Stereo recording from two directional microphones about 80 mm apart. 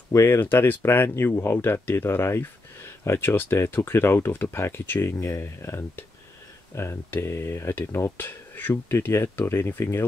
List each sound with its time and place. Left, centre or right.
0.1 s speech: left
5.1 s speech: left